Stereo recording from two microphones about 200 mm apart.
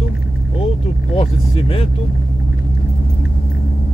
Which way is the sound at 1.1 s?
25° left (ahead or behind).